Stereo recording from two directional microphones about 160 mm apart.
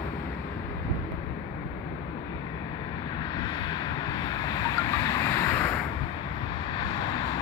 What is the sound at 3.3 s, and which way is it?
Vehicle, 25° left (ahead or behind).